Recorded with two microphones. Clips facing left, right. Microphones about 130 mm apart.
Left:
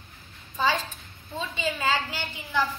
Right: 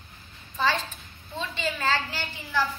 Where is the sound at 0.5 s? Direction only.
15° left (ahead or behind).